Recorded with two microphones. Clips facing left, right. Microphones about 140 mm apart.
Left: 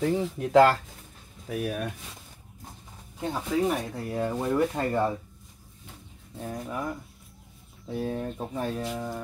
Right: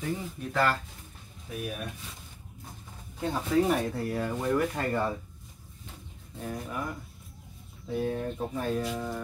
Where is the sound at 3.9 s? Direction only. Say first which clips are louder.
Left 1 dB; 20° left (ahead or behind).